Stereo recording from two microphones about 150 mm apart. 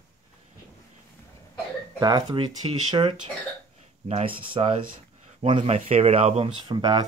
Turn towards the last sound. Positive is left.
turn(degrees=-30)  # may be behind; listen again after turning